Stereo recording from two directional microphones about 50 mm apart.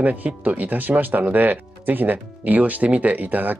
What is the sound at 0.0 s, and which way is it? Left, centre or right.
Speech, right.